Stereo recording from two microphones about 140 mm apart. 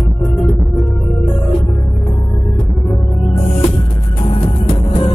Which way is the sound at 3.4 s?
55° left (ahead or behind).